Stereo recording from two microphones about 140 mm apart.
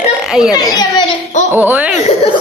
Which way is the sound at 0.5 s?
30° left (ahead or behind).